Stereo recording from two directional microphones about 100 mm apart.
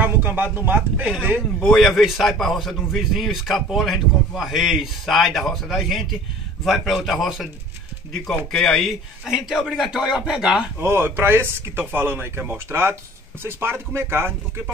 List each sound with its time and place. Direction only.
0.0 s speech: 20° right (ahead or behind)
1.6 s a man's voice: centre (ahead or behind)
8.5 s a man's voice: 5° left (ahead or behind)
10.8 s speech: 25° right (ahead or behind)